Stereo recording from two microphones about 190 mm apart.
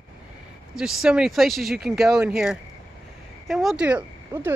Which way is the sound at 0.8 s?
5° right (ahead or behind).